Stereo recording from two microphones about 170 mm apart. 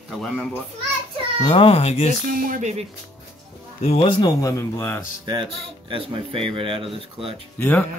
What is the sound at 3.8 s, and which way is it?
Speech, 30° left (ahead or behind).